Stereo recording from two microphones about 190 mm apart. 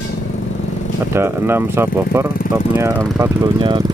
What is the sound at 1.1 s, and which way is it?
Speech, 10° right (ahead or behind).